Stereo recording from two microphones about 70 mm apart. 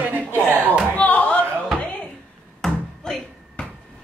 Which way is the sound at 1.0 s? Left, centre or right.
Left.